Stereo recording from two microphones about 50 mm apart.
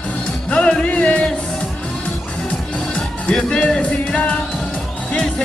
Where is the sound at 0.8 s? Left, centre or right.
Left.